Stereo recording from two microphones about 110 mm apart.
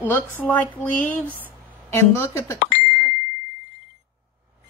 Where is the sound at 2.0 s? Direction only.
25° left (ahead or behind).